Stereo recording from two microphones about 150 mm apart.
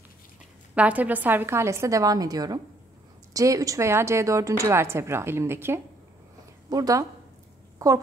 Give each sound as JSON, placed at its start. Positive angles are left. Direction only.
{"t": 0.7, "sound": "a woman's voice", "side_deg": -10}